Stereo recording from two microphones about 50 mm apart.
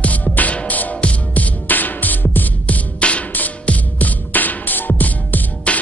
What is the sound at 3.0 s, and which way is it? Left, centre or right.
Music, left.